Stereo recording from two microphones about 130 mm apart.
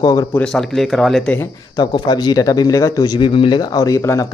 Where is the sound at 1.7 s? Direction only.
30° left (ahead or behind).